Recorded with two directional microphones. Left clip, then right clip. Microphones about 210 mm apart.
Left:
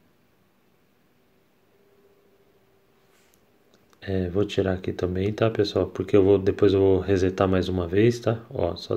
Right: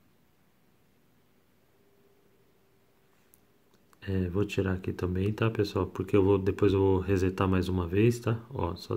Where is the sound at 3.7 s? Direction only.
20° right (ahead or behind).